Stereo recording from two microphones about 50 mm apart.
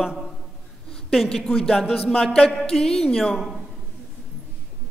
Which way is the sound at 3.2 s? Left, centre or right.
Centre.